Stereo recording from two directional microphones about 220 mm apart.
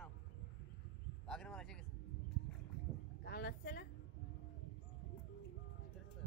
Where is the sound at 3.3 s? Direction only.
45° left (ahead or behind).